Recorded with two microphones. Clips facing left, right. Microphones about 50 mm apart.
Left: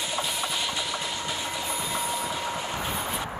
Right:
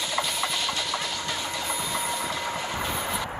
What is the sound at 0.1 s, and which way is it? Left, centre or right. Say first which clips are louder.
Train: right 3 dB; centre.